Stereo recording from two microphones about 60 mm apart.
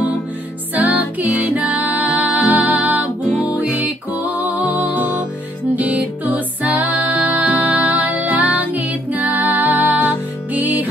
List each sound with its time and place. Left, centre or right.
0.7 s music: right